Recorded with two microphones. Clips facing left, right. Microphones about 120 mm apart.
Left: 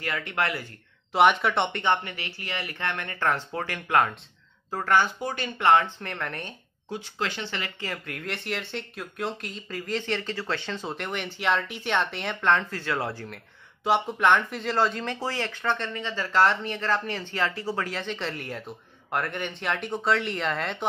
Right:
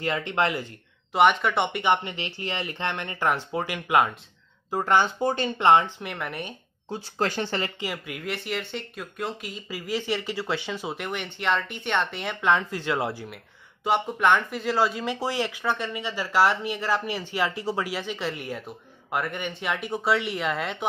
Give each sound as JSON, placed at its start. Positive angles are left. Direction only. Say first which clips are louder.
{"t": 0.0, "sound": "speech", "louder": "right 4 dB", "side_deg": -25}
{"t": 1.1, "sound": "speech", "louder": "even", "side_deg": 0}
{"t": 5.9, "sound": "speech", "louder": "right 1 dB", "side_deg": -10}
{"t": 6.9, "sound": "speech", "louder": "right 4 dB", "side_deg": -40}
{"t": 7.8, "sound": "speech", "louder": "right 2 dB", "side_deg": -10}
{"t": 13.8, "sound": "speech", "louder": "even", "side_deg": 0}